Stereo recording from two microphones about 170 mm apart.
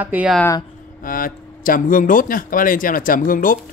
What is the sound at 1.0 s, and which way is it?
Speech, 55° left (ahead or behind).